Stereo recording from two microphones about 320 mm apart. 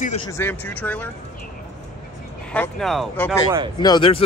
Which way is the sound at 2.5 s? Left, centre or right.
Centre.